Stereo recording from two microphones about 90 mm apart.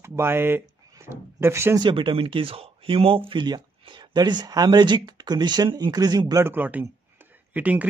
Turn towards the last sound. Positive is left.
turn(degrees=-15)  # may be behind; listen again after turning